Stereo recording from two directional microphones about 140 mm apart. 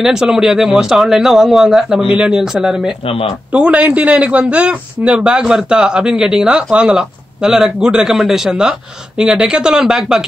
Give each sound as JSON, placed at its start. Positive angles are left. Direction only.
{"t": 0.0, "sound": "speech", "side_deg": -5}
{"t": 3.1, "sound": "speech", "side_deg": 40}
{"t": 3.5, "sound": "a man's voice", "side_deg": -10}